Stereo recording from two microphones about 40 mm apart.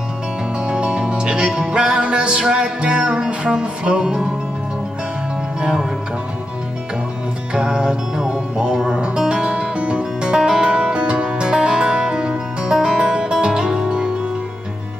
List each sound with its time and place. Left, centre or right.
0.7 s music: right
5.6 s speech: centre
7.5 s music: centre